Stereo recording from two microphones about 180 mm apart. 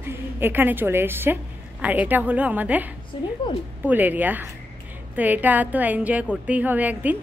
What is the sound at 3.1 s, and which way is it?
Speech, 30° left (ahead or behind).